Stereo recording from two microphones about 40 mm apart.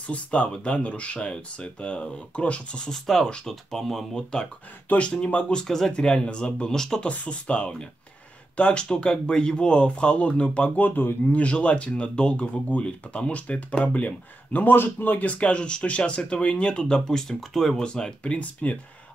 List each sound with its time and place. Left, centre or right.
0.0 s speech: left
2.9 s speech: centre
4.9 s speech: left
5.7 s speech: centre
5.9 s speech: left
10.8 s speech: left
11.2 s speech: left
15.2 s speech: left
17.4 s speech: centre
17.7 s speech: centre
18.2 s speech: left